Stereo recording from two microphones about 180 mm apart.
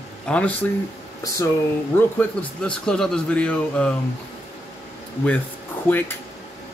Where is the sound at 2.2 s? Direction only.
5° left (ahead or behind).